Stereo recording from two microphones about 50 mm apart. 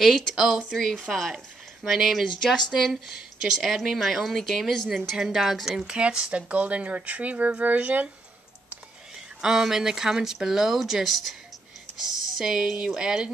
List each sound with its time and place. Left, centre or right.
0.0 s speech: centre
2.4 s speech: centre
2.7 s speech: centre
5.9 s speech: right
9.4 s speech: centre